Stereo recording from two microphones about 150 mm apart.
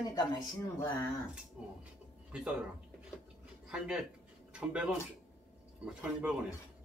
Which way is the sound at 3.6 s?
5° right (ahead or behind).